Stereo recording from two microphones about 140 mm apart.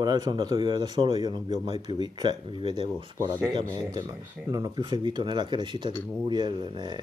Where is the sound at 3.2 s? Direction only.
35° right (ahead or behind).